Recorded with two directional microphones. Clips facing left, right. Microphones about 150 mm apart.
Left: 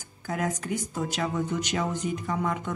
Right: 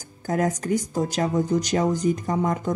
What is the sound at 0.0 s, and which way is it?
Speech, 40° right (ahead or behind).